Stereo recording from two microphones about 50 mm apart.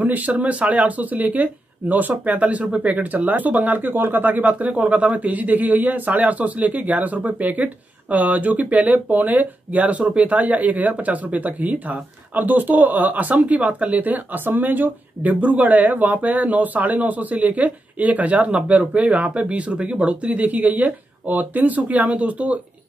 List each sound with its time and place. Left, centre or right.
0.0 s speech: right